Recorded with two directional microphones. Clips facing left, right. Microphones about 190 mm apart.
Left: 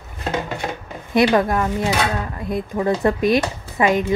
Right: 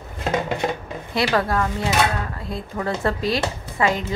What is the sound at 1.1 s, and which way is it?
Speech, 20° left (ahead or behind).